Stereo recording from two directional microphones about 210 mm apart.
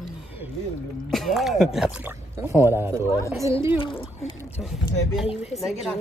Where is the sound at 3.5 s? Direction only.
25° left (ahead or behind).